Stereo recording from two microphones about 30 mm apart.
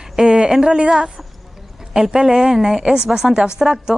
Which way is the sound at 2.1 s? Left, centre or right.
Right.